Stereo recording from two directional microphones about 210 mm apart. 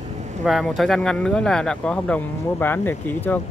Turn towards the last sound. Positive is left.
turn(degrees=10)  # may be behind; listen again after turning